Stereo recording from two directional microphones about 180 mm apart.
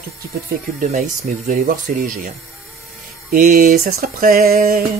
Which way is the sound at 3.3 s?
50° right (ahead or behind).